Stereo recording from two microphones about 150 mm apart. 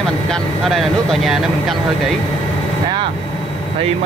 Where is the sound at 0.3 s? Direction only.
Centre (ahead or behind).